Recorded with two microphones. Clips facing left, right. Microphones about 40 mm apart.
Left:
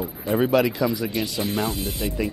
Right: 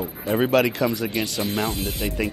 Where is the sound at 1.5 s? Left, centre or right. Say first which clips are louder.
Even; centre.